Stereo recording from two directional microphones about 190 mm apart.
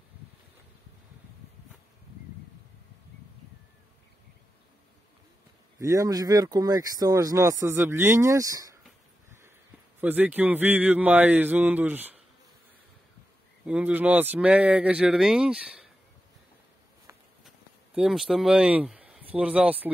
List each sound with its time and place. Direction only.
5.8 s speech: 20° right (ahead or behind)
9.9 s speech: 10° right (ahead or behind)
13.7 s speech: 5° right (ahead or behind)
17.5 s speech: centre (ahead or behind)